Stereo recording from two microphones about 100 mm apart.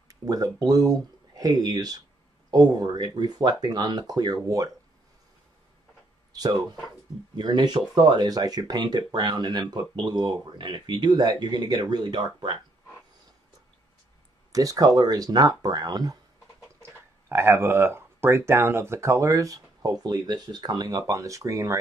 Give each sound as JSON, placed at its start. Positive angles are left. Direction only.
{"t": 0.1, "sound": "speech", "side_deg": -35}
{"t": 6.3, "sound": "speech", "side_deg": -40}
{"t": 14.5, "sound": "speech", "side_deg": -35}
{"t": 16.8, "sound": "speech", "side_deg": -25}